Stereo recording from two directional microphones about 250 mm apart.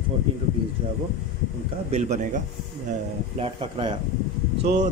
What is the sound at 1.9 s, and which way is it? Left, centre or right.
Speech, right.